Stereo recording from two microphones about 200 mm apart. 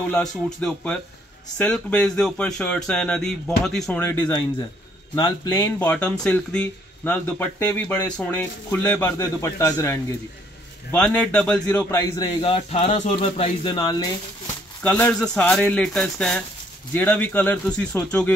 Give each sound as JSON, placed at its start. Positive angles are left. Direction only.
{"t": 0.1, "sound": "a man's voice", "side_deg": 5}
{"t": 14.8, "sound": "a man's voice", "side_deg": 10}